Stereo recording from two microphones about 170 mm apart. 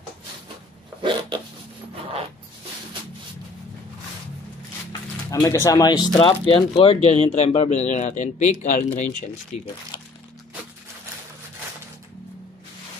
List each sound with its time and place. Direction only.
5.3 s speech: 20° left (ahead or behind); by 9.1 s 50° left (ahead or behind)